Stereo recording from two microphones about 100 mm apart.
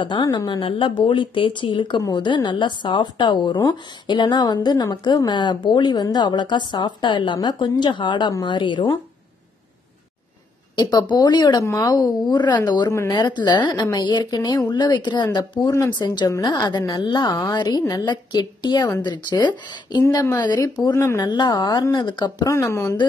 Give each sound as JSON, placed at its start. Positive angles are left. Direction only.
{"t": 0.0, "sound": "a woman's voice", "side_deg": 50}
{"t": 10.8, "sound": "a woman's voice", "side_deg": 45}
{"t": 20.0, "sound": "a woman's voice", "side_deg": 30}
{"t": 21.2, "sound": "a woman's voice", "side_deg": 45}
{"t": 22.5, "sound": "speech", "side_deg": 30}